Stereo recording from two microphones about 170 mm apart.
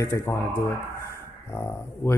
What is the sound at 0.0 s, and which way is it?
Speech, 15° left (ahead or behind).